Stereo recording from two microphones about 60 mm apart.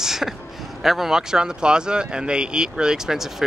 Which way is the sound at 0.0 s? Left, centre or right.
Centre.